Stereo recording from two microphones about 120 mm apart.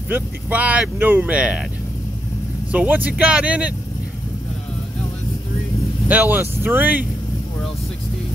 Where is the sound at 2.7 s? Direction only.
15° right (ahead or behind).